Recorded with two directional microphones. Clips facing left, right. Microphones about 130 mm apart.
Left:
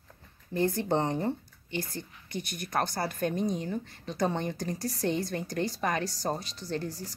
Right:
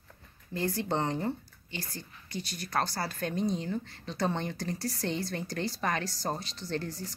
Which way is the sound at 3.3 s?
50° left (ahead or behind).